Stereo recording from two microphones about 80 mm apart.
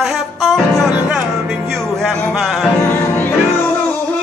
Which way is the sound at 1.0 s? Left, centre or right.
Centre.